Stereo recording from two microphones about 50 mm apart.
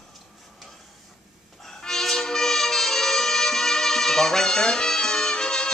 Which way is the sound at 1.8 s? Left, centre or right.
Centre.